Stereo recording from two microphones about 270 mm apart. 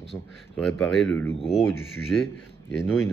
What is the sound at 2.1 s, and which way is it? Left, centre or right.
Speech, centre.